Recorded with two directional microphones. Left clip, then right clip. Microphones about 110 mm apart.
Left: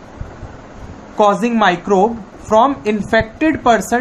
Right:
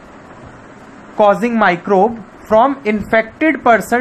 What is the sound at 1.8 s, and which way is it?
Speech, 35° right (ahead or behind).